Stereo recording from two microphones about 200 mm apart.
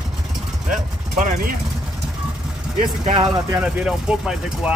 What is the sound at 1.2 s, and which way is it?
Speech, 45° right (ahead or behind).